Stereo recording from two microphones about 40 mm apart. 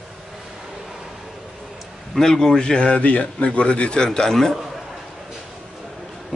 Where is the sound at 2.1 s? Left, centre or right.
Centre.